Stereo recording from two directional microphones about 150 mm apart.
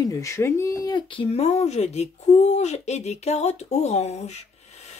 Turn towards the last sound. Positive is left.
turn(degrees=45)  # may be behind; listen again after turning